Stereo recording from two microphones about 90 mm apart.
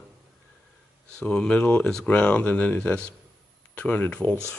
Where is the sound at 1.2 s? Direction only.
10° left (ahead or behind).